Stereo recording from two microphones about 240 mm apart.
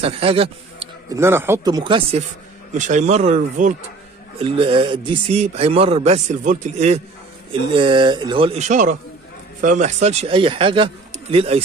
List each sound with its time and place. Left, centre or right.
0.0 s a man's voice: right
1.2 s speech: centre